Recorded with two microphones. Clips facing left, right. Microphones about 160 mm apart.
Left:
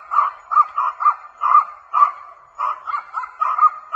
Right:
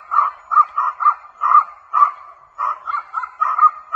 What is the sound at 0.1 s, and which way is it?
Dog, 10° left (ahead or behind).